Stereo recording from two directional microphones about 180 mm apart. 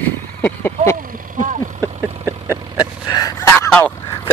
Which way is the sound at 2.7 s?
20° left (ahead or behind).